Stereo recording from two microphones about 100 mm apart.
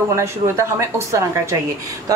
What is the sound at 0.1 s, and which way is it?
Speech, 30° right (ahead or behind).